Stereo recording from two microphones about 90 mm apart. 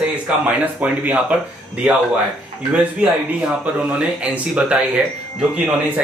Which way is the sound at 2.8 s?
15° right (ahead or behind).